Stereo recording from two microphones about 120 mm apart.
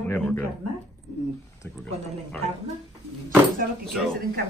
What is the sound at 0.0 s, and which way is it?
Speech, 15° left (ahead or behind).